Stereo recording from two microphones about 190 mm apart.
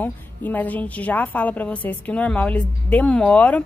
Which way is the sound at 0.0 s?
10° left (ahead or behind).